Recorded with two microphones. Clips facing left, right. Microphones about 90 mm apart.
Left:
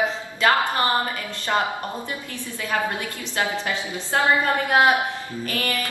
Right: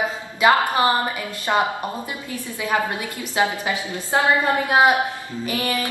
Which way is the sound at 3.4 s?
15° right (ahead or behind).